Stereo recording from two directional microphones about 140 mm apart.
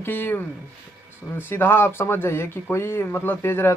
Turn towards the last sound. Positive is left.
turn(degrees=15)  # may be behind; listen again after turning